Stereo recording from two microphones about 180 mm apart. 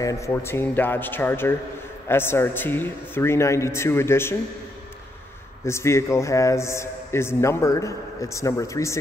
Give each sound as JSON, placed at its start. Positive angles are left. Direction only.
{"t": 0.0, "sound": "a man's voice", "side_deg": 15}
{"t": 5.7, "sound": "a man's voice", "side_deg": 15}